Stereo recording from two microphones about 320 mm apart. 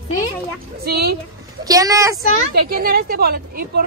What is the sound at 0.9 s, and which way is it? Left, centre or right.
Speech, right.